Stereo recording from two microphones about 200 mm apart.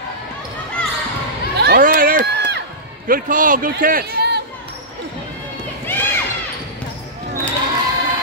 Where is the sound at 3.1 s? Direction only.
45° right (ahead or behind).